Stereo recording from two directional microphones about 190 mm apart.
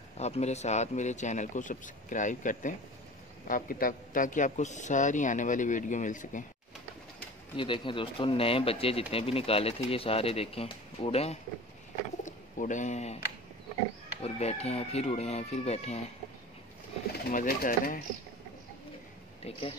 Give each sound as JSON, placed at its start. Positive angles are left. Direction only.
{"t": 0.2, "sound": "speech", "side_deg": 35}
{"t": 7.5, "sound": "speech", "side_deg": 25}
{"t": 14.2, "sound": "speech", "side_deg": 35}
{"t": 17.3, "sound": "speech", "side_deg": 45}